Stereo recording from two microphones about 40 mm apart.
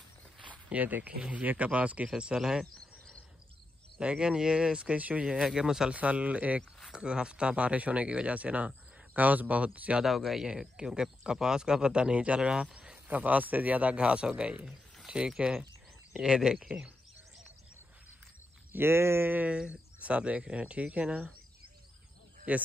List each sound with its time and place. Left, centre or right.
0.5 s a sound: right
1.0 s speech: right
2.1 s a man's voice: centre
4.0 s a man's voice: right
5.9 s speech: right
6.9 s speech: right
10.0 s speech: centre
11.0 s a man's voice: centre
12.7 s cricket: right
13.1 s a man's voice: right; by 16.9 s centre
18.7 s speech: right
19.7 s speech: right
22.5 s speech: right